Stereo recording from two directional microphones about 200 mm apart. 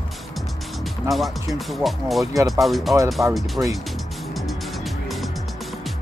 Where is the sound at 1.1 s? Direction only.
Centre (ahead or behind).